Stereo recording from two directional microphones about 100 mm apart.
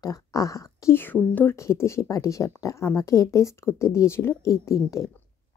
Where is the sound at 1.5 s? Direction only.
30° left (ahead or behind).